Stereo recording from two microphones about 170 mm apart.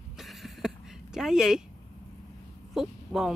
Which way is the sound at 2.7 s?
Centre (ahead or behind).